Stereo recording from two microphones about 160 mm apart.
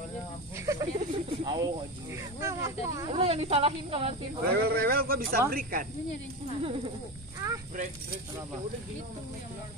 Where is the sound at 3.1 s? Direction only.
35° right (ahead or behind).